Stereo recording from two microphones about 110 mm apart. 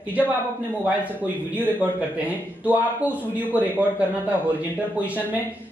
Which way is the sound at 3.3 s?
15° right (ahead or behind).